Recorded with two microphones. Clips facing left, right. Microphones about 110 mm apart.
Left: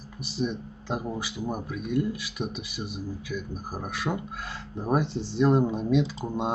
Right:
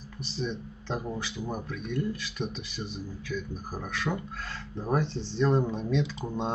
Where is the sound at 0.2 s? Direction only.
10° left (ahead or behind).